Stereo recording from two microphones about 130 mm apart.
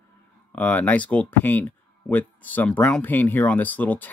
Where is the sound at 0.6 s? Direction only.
10° left (ahead or behind).